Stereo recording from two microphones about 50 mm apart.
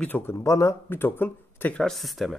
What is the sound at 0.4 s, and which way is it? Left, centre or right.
Speech, left.